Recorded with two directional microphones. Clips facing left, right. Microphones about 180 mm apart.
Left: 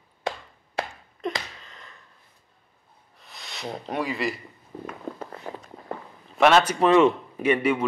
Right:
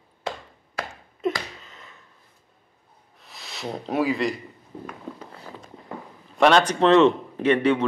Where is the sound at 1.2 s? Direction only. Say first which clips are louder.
Right 4 dB; 5° right (ahead or behind).